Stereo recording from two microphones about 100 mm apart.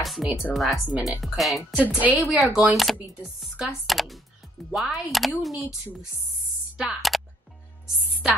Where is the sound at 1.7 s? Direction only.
15° right (ahead or behind); by 5.5 s centre (ahead or behind).